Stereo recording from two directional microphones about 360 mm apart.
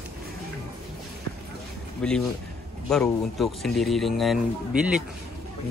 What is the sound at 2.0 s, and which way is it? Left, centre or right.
A man's voice, centre.